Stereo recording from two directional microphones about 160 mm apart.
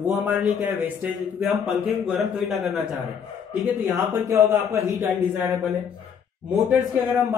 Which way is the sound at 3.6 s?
15° right (ahead or behind).